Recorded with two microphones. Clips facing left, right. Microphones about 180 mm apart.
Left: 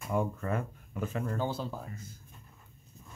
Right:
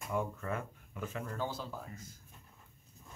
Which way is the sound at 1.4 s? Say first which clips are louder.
Left 3 dB; 30° left (ahead or behind).